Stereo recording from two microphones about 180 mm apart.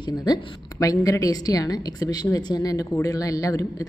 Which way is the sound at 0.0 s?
25° left (ahead or behind).